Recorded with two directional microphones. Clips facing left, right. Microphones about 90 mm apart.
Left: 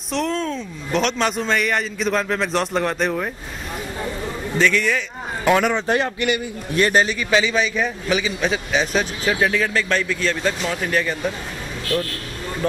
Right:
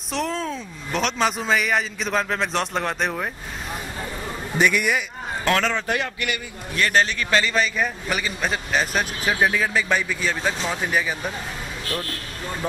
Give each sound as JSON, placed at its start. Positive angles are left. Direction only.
{"t": 0.1, "sound": "a man's voice", "side_deg": 0}
{"t": 4.6, "sound": "a man's voice", "side_deg": -15}
{"t": 5.4, "sound": "a man's voice", "side_deg": 15}
{"t": 5.9, "sound": "a man's voice", "side_deg": 30}
{"t": 7.0, "sound": "a man's voice", "side_deg": 10}